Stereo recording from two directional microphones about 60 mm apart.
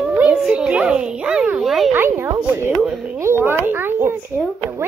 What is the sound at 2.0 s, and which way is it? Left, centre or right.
A child's voice, right.